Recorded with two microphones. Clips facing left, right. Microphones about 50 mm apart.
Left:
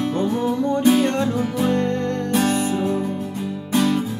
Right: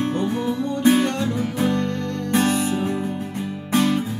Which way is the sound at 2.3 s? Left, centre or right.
Right.